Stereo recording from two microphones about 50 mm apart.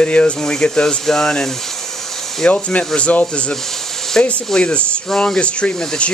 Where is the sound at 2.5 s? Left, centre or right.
Left.